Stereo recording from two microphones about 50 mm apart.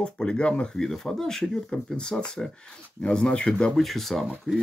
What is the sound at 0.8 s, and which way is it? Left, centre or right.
Speech, centre.